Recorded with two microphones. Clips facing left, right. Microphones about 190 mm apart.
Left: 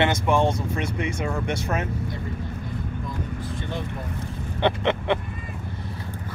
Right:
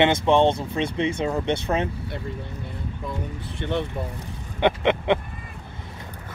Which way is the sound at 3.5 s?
65° right (ahead or behind).